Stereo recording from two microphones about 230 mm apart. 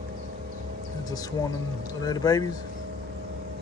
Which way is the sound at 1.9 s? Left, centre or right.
Centre.